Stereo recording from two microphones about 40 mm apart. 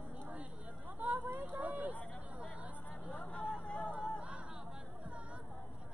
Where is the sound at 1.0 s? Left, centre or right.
Right.